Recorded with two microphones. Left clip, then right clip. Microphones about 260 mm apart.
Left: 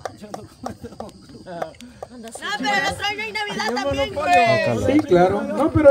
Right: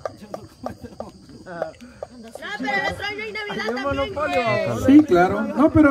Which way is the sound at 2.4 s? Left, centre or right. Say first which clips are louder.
Left 3 dB; left.